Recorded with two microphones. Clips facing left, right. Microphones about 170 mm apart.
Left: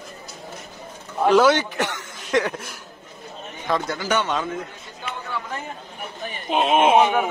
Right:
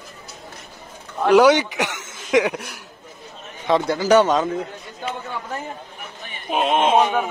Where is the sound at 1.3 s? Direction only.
15° right (ahead or behind).